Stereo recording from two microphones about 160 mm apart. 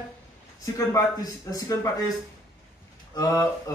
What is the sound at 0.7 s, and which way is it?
A man's voice, 20° left (ahead or behind).